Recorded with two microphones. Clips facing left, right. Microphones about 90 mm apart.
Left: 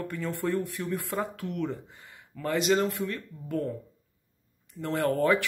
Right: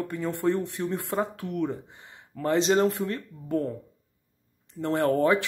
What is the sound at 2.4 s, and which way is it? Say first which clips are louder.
Speech: right 3 dB; 30° right (ahead or behind).